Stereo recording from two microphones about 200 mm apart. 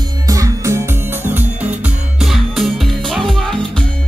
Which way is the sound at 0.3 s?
15° right (ahead or behind).